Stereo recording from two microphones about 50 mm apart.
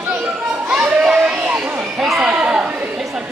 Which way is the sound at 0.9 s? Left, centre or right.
Centre.